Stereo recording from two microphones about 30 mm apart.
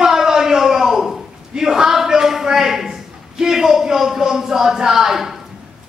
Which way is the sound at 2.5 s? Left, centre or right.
Centre.